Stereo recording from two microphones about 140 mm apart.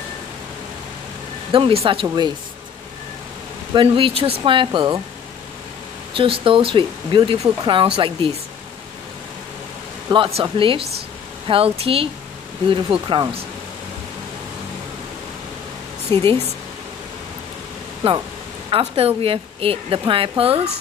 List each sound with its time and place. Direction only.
1.5 s a woman's voice: 40° right (ahead or behind)
2.0 s a woman's voice: 30° right (ahead or behind)
3.7 s a woman's voice: 40° right (ahead or behind)
6.1 s a woman's voice: 40° right (ahead or behind)
10.1 s a woman's voice: 40° right (ahead or behind)
16.1 s a woman's voice: 35° right (ahead or behind)
18.0 s a woman's voice: 45° right (ahead or behind)